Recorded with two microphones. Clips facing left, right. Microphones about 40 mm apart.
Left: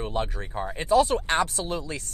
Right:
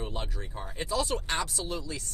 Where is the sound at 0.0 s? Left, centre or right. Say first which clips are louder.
Left 8 dB; left.